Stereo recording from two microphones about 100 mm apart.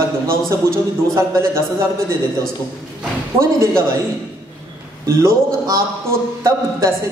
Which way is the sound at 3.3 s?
30° right (ahead or behind).